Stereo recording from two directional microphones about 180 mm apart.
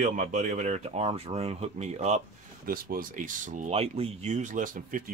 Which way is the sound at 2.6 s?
55° right (ahead or behind).